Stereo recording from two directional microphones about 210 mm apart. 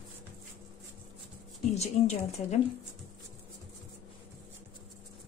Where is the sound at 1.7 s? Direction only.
30° left (ahead or behind).